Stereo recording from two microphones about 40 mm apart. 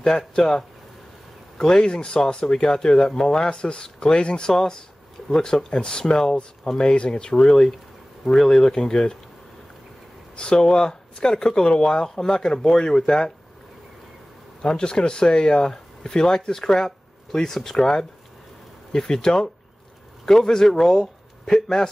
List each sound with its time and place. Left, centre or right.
0.3 s speech: centre
3.4 s speech: left
10.3 s speech: left
14.6 s a man's voice: centre